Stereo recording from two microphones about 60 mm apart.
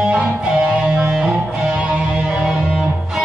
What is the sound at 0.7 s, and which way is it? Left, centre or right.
Music, centre.